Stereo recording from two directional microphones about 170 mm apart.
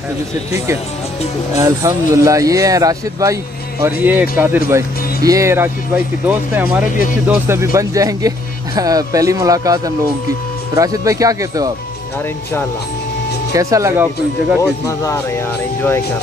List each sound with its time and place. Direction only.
1.6 s speech: 15° right (ahead or behind)
13.5 s speech: 20° right (ahead or behind)
15.1 s speech: 10° left (ahead or behind)